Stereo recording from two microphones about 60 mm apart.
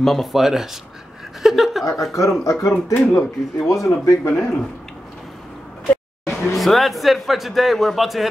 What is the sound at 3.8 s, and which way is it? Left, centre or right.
Speech, left.